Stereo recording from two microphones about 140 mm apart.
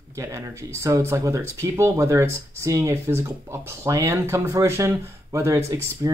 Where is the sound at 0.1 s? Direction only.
20° right (ahead or behind).